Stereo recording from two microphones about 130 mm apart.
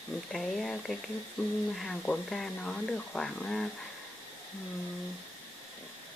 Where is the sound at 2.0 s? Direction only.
5° left (ahead or behind).